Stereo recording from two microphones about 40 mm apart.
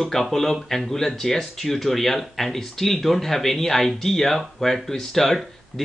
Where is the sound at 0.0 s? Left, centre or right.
Centre.